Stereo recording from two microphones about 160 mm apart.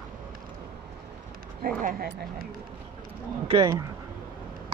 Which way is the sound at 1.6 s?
65° right (ahead or behind).